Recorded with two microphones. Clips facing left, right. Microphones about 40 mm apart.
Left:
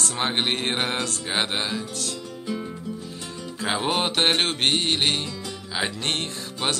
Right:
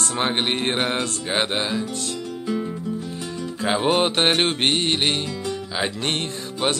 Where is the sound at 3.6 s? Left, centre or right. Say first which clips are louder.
Right 4 dB; centre.